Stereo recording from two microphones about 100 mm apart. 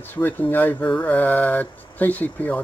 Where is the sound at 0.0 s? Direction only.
20° left (ahead or behind).